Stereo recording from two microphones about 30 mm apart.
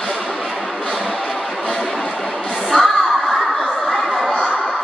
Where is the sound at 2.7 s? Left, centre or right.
Left.